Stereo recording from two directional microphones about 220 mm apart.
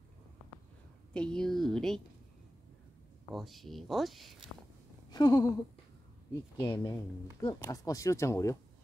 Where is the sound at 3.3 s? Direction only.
Centre (ahead or behind).